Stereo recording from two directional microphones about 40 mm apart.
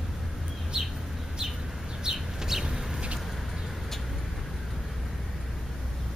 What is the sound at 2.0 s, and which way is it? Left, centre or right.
Chicken, centre.